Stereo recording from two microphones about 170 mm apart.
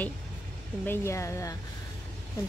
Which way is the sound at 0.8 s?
15° left (ahead or behind).